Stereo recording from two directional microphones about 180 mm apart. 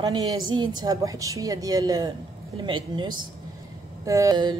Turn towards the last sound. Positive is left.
turn(degrees=-20)  # may be behind; listen again after turning